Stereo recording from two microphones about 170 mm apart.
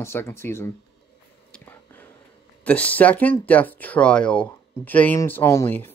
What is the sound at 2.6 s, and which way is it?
Speech, 10° left (ahead or behind).